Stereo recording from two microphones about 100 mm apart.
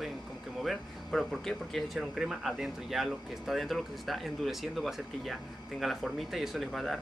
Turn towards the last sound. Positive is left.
turn(degrees=0)  # may be behind; listen again after turning